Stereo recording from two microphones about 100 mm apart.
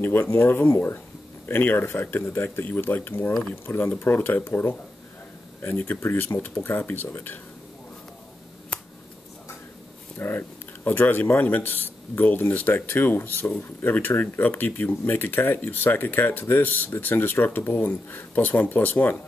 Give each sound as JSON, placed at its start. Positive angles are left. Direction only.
{"t": 0.0, "sound": "speech", "side_deg": 25}
{"t": 8.7, "sound": "finger snapping", "side_deg": 10}
{"t": 10.1, "sound": "speech", "side_deg": 25}